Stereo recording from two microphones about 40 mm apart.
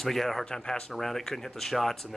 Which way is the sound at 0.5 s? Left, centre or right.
Centre.